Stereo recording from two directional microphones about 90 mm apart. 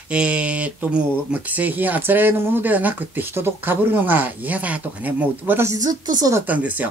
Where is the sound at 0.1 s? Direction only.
15° right (ahead or behind).